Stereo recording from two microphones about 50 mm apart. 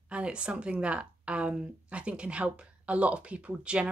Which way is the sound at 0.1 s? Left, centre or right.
Right.